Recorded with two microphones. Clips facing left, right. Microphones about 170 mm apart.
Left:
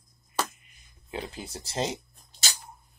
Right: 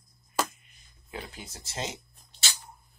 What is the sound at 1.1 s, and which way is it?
Speech, 30° left (ahead or behind).